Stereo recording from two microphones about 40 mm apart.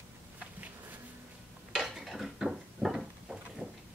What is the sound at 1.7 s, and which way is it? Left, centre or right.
Dishes, centre.